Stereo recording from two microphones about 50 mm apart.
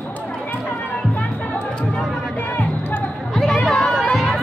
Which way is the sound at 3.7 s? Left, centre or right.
Centre.